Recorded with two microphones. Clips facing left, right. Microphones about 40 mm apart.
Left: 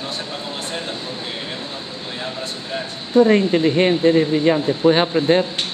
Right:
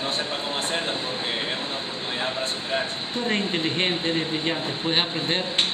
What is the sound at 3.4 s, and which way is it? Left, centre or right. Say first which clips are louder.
Speech: left 9 dB; right.